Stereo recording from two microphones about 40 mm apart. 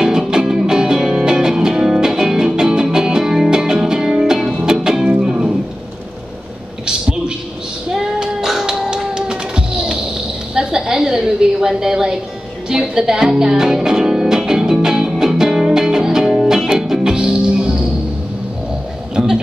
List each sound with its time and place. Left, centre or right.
0.0 s music: centre
6.9 s a sound: right
8.2 s music: centre
8.9 s a sound: centre
12.6 s music: centre
19.1 s music: centre